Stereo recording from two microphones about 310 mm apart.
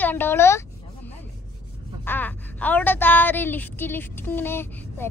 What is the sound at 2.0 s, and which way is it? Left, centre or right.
Speech, centre.